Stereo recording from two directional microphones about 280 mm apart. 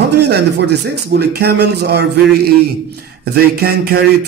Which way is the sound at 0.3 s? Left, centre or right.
Right.